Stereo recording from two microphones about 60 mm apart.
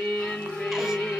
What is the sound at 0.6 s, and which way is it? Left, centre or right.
Music, centre.